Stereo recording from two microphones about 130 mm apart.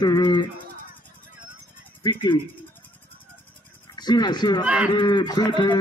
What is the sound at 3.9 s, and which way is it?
Speech, 35° left (ahead or behind).